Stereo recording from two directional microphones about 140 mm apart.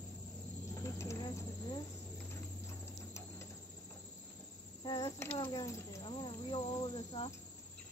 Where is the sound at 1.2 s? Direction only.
30° left (ahead or behind).